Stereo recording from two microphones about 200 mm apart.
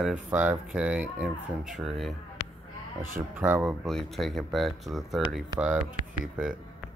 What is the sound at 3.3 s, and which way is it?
Speech, 10° right (ahead or behind).